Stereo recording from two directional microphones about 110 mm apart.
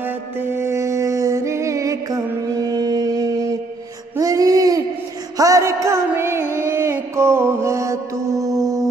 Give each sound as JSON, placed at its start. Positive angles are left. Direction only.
{"t": 0.0, "sound": "music", "side_deg": -20}
{"t": 4.2, "sound": "a sound", "side_deg": -35}
{"t": 5.4, "sound": "music", "side_deg": -30}